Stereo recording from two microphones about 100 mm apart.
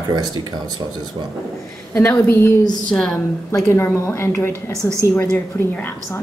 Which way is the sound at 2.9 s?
10° left (ahead or behind).